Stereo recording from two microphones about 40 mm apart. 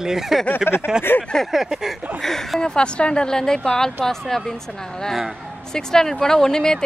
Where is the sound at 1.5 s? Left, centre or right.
Centre.